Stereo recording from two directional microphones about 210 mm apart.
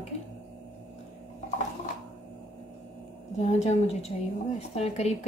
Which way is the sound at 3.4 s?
35° left (ahead or behind).